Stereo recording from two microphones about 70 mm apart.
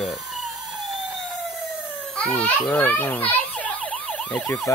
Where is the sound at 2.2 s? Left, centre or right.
Left.